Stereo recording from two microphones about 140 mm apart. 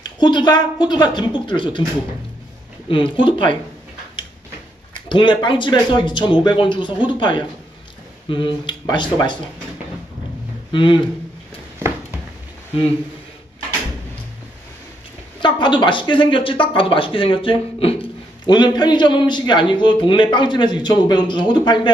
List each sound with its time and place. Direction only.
0.0 s a man's voice: 30° left (ahead or behind)
2.9 s a man's voice: 35° left (ahead or behind)
5.1 s a man's voice: 35° left (ahead or behind)
10.7 s speech: 35° left (ahead or behind)
15.4 s a man's voice: 35° left (ahead or behind)
18.4 s a man's voice: 30° left (ahead or behind)